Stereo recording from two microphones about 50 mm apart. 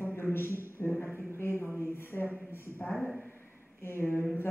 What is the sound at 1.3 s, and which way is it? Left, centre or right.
Speech, left.